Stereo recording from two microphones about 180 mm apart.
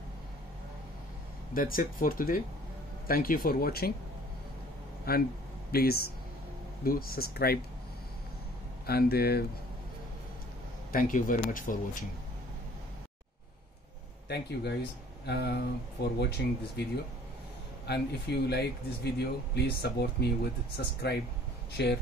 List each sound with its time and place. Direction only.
1.5 s speech: 50° left (ahead or behind)
5.1 s speech: 60° left (ahead or behind)
8.8 s speech: 60° left (ahead or behind)
10.9 s speech: 50° left (ahead or behind)
14.2 s speech: 65° left (ahead or behind)